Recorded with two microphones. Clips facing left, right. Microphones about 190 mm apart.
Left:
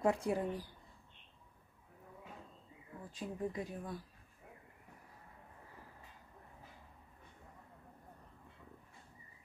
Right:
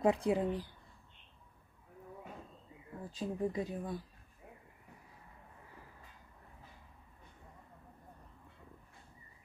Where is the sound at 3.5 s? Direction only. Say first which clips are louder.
Right 4 dB; 25° right (ahead or behind).